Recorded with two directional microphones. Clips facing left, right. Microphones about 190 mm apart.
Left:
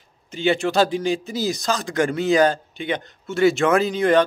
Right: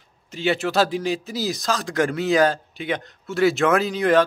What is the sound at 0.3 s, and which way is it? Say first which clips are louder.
Speech: left 2 dB; centre (ahead or behind).